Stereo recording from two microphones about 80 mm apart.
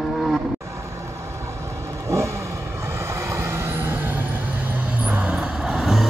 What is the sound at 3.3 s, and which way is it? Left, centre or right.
Vehicle, right.